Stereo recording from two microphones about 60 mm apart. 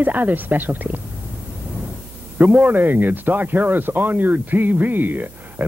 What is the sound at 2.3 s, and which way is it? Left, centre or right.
A woman's voice, right.